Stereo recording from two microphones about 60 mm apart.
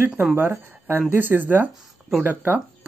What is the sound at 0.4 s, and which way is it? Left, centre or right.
Speech, right.